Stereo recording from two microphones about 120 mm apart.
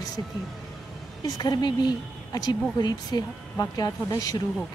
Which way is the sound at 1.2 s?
35° left (ahead or behind).